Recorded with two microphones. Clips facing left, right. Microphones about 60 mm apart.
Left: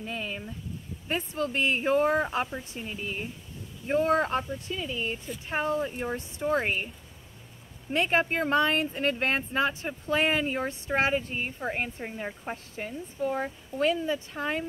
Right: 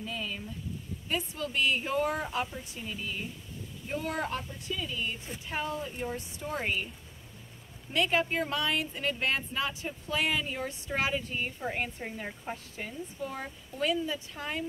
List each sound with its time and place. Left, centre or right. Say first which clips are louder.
0.0 s a sound: left 2 dB; left
1.0 s speech: left 4 dB; left
7.9 s speech: left 3 dB; left